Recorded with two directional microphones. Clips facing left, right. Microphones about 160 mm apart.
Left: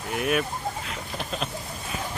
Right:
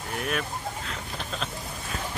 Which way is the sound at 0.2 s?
10° left (ahead or behind).